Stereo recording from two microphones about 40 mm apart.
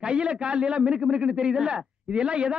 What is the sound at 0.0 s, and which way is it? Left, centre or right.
A woman's voice, right.